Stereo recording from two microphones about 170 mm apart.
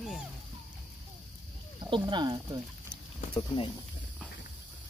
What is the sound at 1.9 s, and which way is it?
Speech, 25° right (ahead or behind).